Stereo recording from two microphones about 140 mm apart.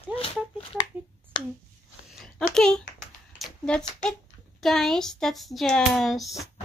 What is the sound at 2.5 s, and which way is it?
Speech, 5° left (ahead or behind).